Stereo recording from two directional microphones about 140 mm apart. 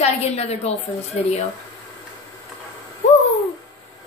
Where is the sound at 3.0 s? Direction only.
55° left (ahead or behind).